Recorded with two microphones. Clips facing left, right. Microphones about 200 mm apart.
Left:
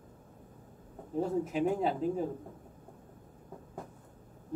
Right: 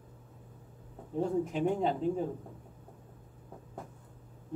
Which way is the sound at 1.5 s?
5° left (ahead or behind).